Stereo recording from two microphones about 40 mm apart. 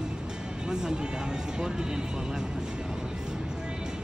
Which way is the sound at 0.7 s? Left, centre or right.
Centre.